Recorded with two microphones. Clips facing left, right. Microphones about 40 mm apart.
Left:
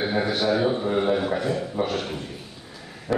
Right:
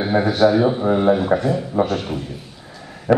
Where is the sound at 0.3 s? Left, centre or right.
Centre.